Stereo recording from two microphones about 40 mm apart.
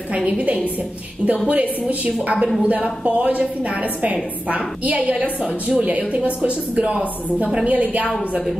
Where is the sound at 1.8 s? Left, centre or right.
Right.